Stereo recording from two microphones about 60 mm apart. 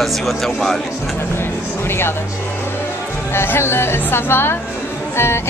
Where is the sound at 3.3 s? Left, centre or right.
Left.